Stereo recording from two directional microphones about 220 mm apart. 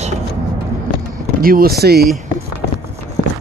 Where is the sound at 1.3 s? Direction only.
40° right (ahead or behind).